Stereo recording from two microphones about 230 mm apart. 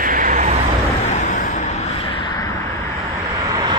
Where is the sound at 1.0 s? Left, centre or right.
Left.